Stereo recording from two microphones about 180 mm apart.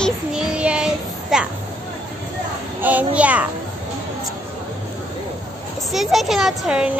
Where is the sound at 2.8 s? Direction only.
10° right (ahead or behind).